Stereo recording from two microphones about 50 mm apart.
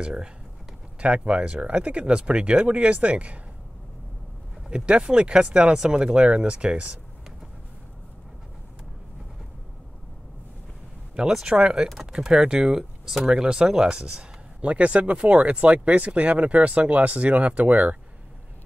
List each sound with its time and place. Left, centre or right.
0.0 s speech: centre
4.6 s speech: centre
11.4 s speech: centre
14.7 s speech: right